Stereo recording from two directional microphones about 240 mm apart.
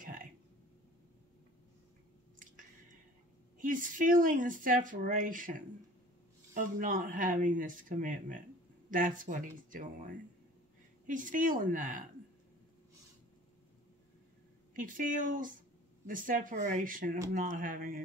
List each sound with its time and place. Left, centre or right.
3.5 s speech: right
14.8 s speech: right